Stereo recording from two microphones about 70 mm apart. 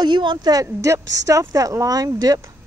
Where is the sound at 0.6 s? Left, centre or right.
Right.